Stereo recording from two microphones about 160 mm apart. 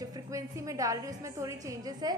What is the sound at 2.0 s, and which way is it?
Music, 25° right (ahead or behind).